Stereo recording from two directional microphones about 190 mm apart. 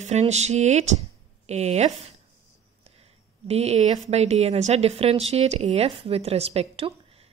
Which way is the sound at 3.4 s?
35° right (ahead or behind).